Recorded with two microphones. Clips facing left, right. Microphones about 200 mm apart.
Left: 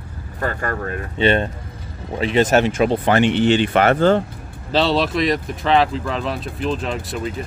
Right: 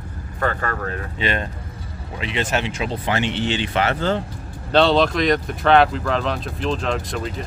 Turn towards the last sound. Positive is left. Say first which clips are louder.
# even
turn(degrees=5)  # may be behind; listen again after turning